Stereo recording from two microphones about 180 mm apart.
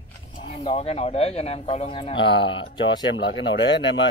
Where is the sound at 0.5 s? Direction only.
35° left (ahead or behind).